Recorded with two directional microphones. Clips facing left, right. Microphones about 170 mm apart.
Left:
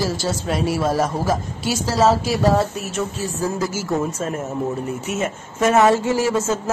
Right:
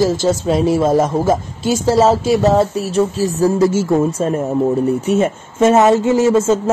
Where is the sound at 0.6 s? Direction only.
25° right (ahead or behind).